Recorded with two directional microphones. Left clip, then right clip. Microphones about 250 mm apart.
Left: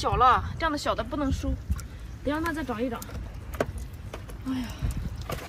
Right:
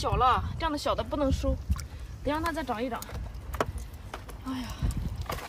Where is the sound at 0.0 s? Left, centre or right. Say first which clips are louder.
Left 4 dB; centre.